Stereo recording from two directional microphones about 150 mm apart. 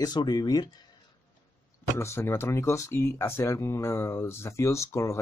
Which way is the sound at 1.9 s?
15° left (ahead or behind).